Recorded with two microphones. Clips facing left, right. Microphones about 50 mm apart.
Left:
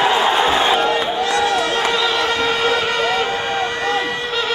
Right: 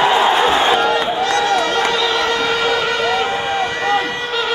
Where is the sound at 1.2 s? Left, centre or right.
Centre.